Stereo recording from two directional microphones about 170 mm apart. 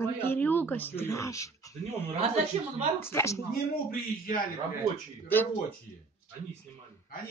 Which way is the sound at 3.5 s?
60° left (ahead or behind).